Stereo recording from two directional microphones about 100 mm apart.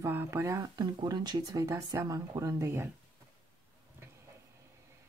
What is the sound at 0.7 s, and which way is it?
Speech, 45° right (ahead or behind).